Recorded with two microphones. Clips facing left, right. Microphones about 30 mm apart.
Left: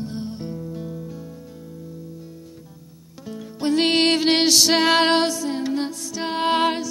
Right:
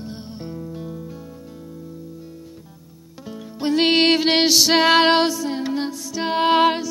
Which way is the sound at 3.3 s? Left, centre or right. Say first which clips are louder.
Even; centre.